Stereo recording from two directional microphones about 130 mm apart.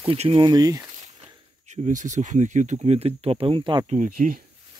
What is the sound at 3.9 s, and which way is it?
Speech, 80° right.